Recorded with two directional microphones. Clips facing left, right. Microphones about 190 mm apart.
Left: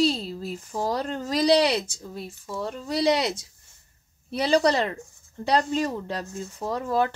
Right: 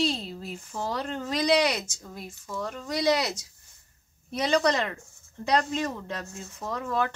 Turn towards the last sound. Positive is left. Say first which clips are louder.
# left 4 dB
turn(degrees=35)  # may be behind; listen again after turning